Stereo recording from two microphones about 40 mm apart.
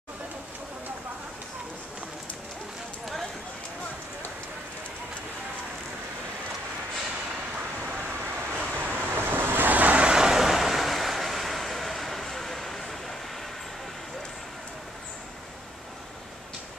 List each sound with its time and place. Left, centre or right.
7.8 s vehicle: right
9.1 s waves: right
9.7 s vehicle: right
10.0 s vehicle: centre